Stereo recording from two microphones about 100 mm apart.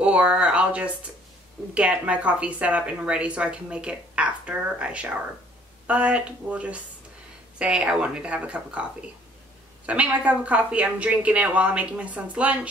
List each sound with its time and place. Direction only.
0.0 s speech: 10° right (ahead or behind)